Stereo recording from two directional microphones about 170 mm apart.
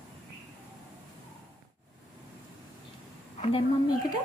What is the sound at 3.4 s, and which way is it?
Speech, 35° left (ahead or behind).